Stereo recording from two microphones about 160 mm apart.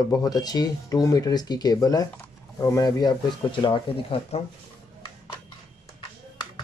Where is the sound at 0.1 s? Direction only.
25° left (ahead or behind).